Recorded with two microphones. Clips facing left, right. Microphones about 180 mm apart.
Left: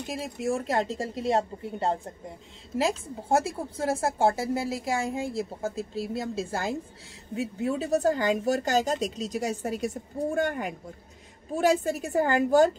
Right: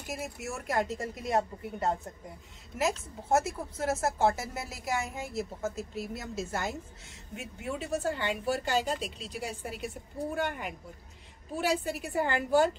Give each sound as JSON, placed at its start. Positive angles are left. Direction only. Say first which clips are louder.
{"t": 0.0, "sound": "a woman's voice", "louder": "left 7 dB", "side_deg": 30}